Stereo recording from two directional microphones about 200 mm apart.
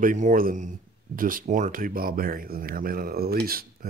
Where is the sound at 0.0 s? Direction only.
40° right (ahead or behind).